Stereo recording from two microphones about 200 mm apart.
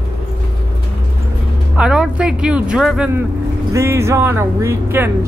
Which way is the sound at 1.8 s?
5° right (ahead or behind).